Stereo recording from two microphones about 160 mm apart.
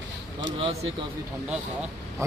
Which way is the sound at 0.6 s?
40° right (ahead or behind).